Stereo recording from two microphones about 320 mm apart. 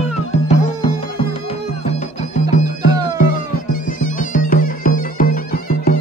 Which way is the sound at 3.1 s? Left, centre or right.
Left.